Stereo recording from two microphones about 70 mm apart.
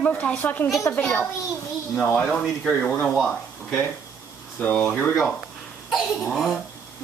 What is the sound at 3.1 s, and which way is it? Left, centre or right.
Speech, centre.